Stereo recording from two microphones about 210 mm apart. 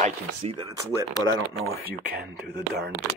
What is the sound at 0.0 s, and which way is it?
Speech, 30° right (ahead or behind).